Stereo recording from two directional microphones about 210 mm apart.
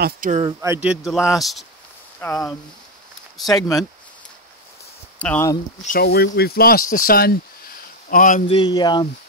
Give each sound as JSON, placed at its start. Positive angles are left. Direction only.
{"t": 0.0, "sound": "speech", "side_deg": -40}
{"t": 0.4, "sound": "speech", "side_deg": -15}
{"t": 2.1, "sound": "speech", "side_deg": 10}
{"t": 5.2, "sound": "speech", "side_deg": 10}
{"t": 5.9, "sound": "speech", "side_deg": 45}
{"t": 8.5, "sound": "speech", "side_deg": 25}